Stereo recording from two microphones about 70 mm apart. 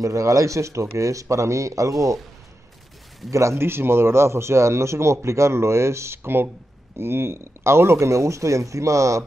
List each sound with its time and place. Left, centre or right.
0.0 s speech: right
3.3 s speech: right